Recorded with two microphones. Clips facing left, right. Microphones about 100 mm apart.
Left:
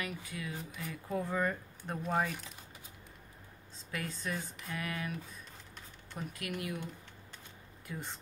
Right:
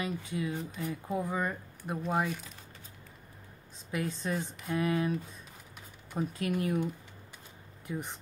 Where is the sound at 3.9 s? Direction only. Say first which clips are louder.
Right 5 dB; 20° right (ahead or behind).